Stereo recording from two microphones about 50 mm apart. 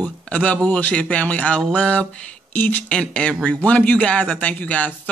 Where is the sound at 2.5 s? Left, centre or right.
Left.